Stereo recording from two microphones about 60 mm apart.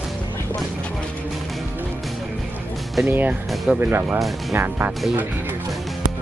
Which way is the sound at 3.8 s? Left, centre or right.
Right.